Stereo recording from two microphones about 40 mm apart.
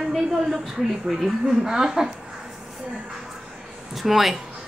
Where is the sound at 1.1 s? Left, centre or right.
Centre.